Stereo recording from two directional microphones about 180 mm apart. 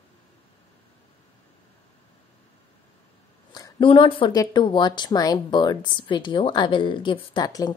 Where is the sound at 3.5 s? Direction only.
25° left (ahead or behind).